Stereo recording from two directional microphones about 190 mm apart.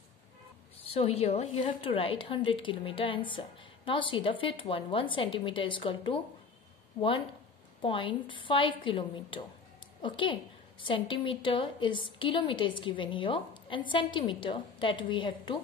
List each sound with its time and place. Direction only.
0.8 s a woman's voice: 30° left (ahead or behind)
7.8 s a woman's voice: 25° left (ahead or behind)